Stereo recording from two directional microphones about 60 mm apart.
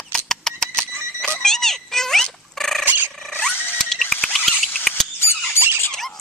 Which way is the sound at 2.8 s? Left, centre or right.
Right.